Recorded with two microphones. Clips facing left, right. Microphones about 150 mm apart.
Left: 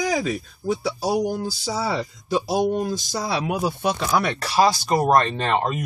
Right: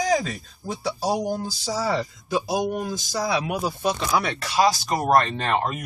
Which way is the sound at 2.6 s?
25° left (ahead or behind).